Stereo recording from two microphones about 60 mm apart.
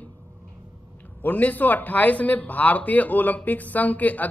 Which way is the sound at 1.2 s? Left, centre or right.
Left.